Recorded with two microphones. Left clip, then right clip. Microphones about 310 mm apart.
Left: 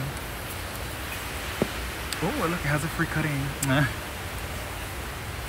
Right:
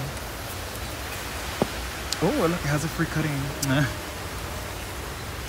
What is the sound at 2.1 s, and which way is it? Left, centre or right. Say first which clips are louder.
Speech: right 4 dB; centre.